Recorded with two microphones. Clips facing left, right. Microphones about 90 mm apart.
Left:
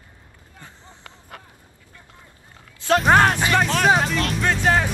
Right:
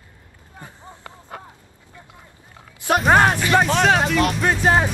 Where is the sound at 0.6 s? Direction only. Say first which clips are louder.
Right 5 dB; 15° right (ahead or behind).